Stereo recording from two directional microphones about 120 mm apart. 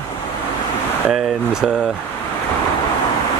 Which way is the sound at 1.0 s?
5° right (ahead or behind).